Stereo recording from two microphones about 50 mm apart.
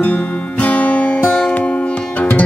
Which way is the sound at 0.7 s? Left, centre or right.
Left.